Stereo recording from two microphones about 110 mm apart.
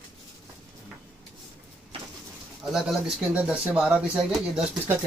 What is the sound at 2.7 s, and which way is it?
Speech, 5° right (ahead or behind).